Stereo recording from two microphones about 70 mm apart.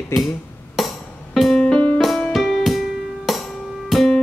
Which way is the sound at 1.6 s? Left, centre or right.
Centre.